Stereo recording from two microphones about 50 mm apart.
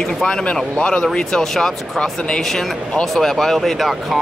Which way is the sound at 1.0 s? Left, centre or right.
Centre.